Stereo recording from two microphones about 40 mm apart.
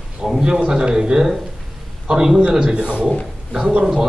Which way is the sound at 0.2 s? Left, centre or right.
Centre.